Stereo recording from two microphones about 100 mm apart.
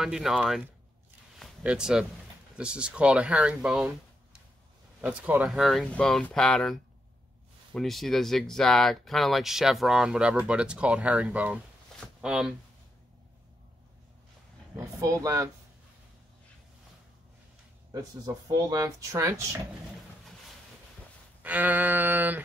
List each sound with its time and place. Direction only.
0.0 s speech: 5° right (ahead or behind)
1.6 s speech: 10° right (ahead or behind)
5.5 s speech: centre (ahead or behind)
15.0 s speech: 35° right (ahead or behind)
17.9 s speech: 35° right (ahead or behind)
21.4 s speech: 15° right (ahead or behind)